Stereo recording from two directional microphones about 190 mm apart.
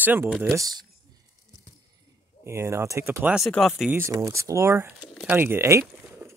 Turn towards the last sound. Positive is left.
turn(degrees=-15)  # may be behind; listen again after turning